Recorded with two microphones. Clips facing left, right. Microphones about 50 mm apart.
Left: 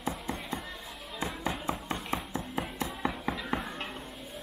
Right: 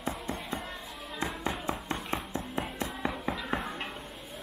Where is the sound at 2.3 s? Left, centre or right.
Left.